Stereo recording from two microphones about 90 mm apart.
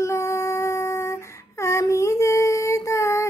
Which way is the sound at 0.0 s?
30° left (ahead or behind).